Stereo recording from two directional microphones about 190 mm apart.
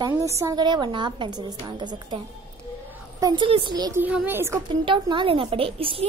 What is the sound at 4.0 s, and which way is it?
Speech, 5° right (ahead or behind).